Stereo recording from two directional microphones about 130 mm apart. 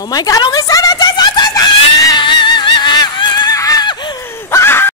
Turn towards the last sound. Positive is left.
turn(degrees=20)  # may be behind; listen again after turning